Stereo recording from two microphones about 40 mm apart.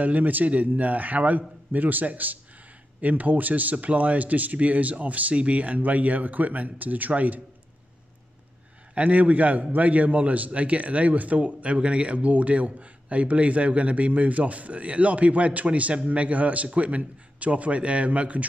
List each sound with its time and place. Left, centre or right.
0.0 s a man's voice: right
8.9 s a man's voice: right